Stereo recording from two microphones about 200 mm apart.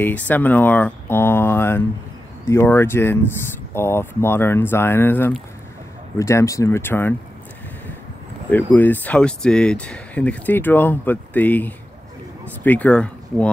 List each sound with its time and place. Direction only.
0.0 s speech: 10° left (ahead or behind)
8.5 s speech: 10° left (ahead or behind)